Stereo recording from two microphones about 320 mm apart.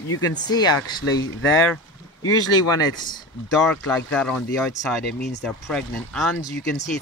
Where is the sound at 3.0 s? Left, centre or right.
Centre.